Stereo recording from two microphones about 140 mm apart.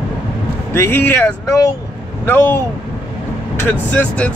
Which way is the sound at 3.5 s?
15° left (ahead or behind).